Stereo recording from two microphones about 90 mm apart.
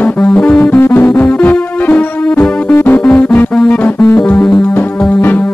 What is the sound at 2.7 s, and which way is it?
Music, 20° left (ahead or behind).